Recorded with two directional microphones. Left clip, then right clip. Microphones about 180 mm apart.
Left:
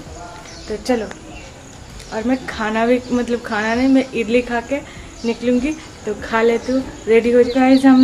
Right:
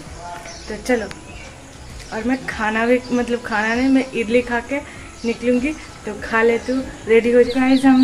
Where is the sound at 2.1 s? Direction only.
5° left (ahead or behind).